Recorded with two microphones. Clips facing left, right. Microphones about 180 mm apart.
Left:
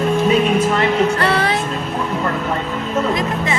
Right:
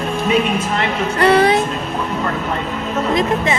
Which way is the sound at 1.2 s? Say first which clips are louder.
Right 5 dB; 15° right (ahead or behind).